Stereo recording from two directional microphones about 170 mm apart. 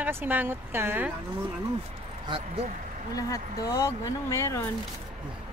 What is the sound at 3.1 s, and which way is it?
Speech, 20° left (ahead or behind).